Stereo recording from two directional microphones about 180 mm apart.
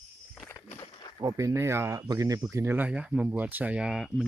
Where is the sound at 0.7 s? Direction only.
30° left (ahead or behind).